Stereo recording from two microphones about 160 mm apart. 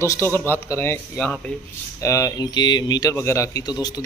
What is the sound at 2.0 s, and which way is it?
Speech, 20° left (ahead or behind).